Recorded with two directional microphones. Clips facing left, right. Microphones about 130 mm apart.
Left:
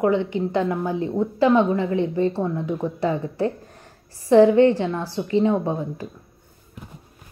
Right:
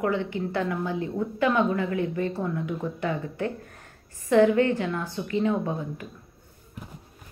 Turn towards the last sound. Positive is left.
turn(degrees=30)  # may be behind; listen again after turning